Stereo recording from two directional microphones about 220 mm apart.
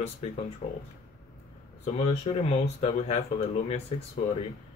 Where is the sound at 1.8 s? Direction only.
25° left (ahead or behind).